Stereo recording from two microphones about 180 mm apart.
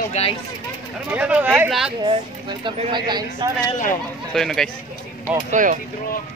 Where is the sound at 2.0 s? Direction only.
30° right (ahead or behind).